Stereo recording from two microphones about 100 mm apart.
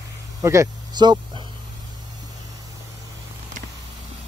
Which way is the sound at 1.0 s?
45° right (ahead or behind).